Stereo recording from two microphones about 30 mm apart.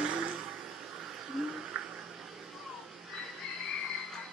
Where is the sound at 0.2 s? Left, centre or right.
Right.